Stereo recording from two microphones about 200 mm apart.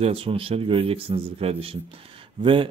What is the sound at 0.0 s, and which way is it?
A man's voice, 30° right (ahead or behind).